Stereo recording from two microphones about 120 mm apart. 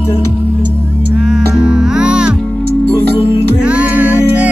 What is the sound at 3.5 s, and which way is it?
Music, 10° right (ahead or behind).